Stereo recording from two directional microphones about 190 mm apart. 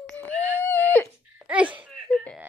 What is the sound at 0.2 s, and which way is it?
Whimper, 10° left (ahead or behind).